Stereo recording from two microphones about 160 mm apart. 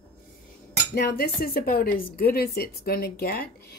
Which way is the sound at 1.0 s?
80° left.